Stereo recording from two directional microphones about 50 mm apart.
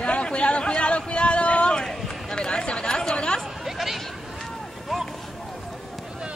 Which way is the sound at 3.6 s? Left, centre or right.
Centre.